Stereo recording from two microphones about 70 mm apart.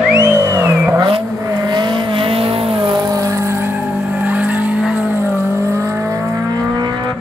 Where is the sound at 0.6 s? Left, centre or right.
Right.